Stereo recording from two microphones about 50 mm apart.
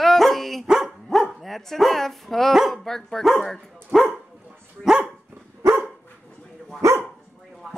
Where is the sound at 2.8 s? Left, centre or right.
Centre.